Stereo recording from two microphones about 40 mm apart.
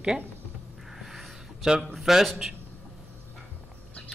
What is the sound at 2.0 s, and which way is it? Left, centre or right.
Speech, centre.